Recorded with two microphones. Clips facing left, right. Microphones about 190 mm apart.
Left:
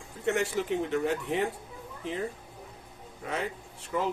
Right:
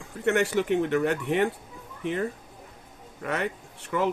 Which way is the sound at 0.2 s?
70° right (ahead or behind).